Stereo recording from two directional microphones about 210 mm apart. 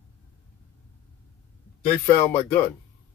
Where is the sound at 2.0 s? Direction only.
10° left (ahead or behind).